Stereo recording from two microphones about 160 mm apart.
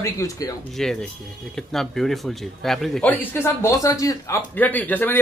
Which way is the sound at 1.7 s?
Centre (ahead or behind).